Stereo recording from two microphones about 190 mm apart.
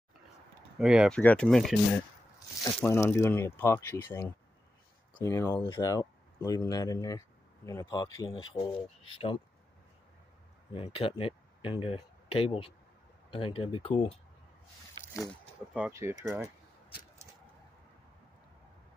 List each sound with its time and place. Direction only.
0.7 s speech: centre (ahead or behind)
2.8 s speech: 10° left (ahead or behind); by 9.4 s 30° left (ahead or behind)
10.7 s speech: 30° left (ahead or behind)
15.7 s speech: 10° right (ahead or behind)